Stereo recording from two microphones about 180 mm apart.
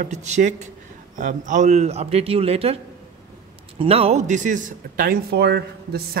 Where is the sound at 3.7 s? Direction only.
35° right (ahead or behind).